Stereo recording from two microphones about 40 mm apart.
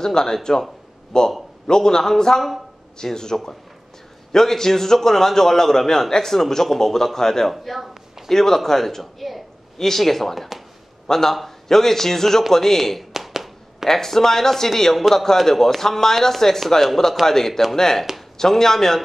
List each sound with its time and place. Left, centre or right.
0.0 s a man's voice: centre
7.5 s a man's voice: centre
13.1 s a sound: centre
13.8 s a man's voice: centre